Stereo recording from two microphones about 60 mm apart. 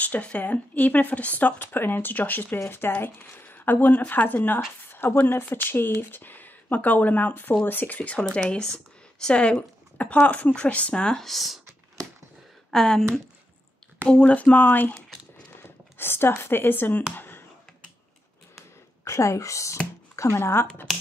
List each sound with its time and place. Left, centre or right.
0.0 s speech: left; by 11.6 s centre
12.7 s speech: centre
14.0 s speech: centre
16.0 s speech: left
19.0 s a woman's voice: left
20.2 s speech: left